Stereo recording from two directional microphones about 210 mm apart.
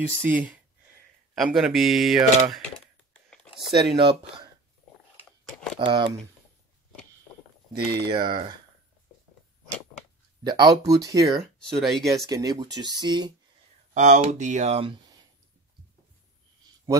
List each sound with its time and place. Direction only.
0.2 s speech: 10° right (ahead or behind)
3.7 s speech: 25° right (ahead or behind)
5.5 s a sound: 5° left (ahead or behind)
5.8 s speech: 20° right (ahead or behind)
8.0 s speech: 25° right (ahead or behind)
10.4 s speech: 20° right (ahead or behind)
11.8 s speech: centre (ahead or behind)
12.3 s speech: 15° right (ahead or behind)
13.9 s speech: 35° right (ahead or behind)